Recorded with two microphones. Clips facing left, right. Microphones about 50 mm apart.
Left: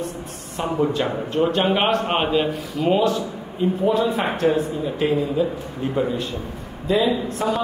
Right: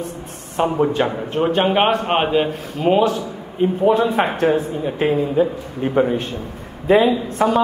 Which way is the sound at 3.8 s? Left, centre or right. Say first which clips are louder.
Right 5 dB; right.